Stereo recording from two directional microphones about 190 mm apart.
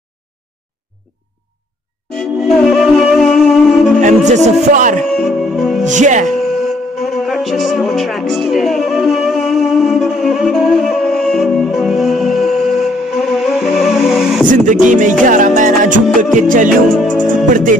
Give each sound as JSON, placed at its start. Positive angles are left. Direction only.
{"t": 2.1, "sound": "music", "side_deg": 0}
{"t": 4.0, "sound": "music", "side_deg": -40}
{"t": 5.1, "sound": "music", "side_deg": 0}
{"t": 5.9, "sound": "music", "side_deg": -40}
{"t": 6.2, "sound": "music", "side_deg": 0}
{"t": 14.5, "sound": "music", "side_deg": -40}
{"t": 16.9, "sound": "music", "side_deg": 0}
{"t": 17.5, "sound": "music", "side_deg": -45}